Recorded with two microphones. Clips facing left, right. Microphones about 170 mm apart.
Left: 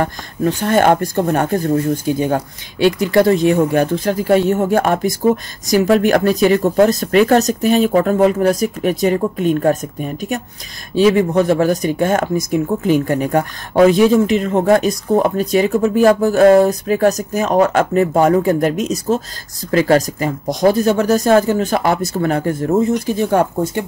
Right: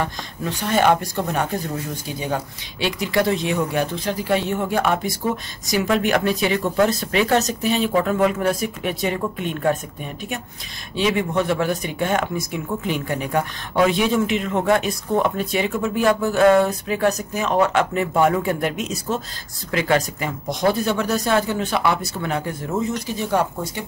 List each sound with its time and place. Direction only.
0.0 s speech: 45° left (ahead or behind)